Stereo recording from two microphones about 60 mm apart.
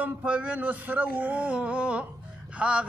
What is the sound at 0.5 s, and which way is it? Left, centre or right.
Speech, right.